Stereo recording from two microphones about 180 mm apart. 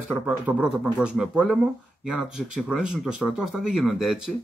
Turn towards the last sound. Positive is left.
turn(degrees=-5)  # may be behind; listen again after turning